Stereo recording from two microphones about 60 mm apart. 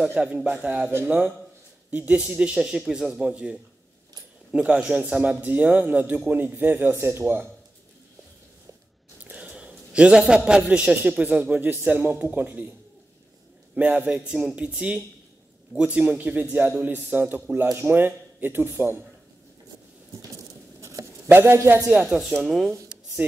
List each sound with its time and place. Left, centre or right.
0.1 s a man's voice: centre
2.5 s a man's voice: centre; by 7.4 s right
9.2 s a man's voice: right
13.7 s a man's voice: right
20.8 s writing: right
21.3 s speech: right
21.9 s a man's voice: centre
22.3 s speech: centre